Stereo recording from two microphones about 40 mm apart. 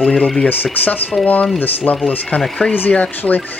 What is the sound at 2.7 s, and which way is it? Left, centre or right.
Speech, left.